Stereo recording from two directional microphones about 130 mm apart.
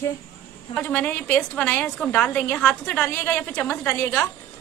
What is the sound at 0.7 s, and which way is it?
A woman's voice, 15° left (ahead or behind).